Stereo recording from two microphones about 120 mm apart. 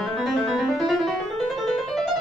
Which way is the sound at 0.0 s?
Centre (ahead or behind).